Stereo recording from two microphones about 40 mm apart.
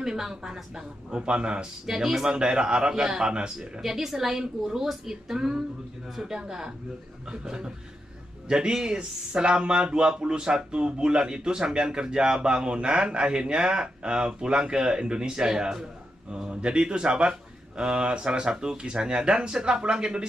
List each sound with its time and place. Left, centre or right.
0.0 s speech: centre
1.9 s speech: centre
3.8 s speech: centre